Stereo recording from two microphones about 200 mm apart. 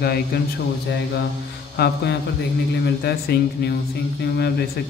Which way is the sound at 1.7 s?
55° left (ahead or behind).